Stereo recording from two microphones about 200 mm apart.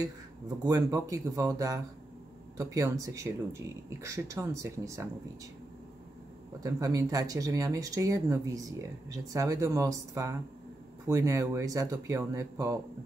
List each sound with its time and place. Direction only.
0.7 s speech: 15° right (ahead or behind)
6.6 s speech: 20° right (ahead or behind)